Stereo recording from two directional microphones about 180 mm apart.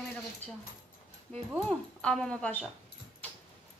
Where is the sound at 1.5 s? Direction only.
5° left (ahead or behind).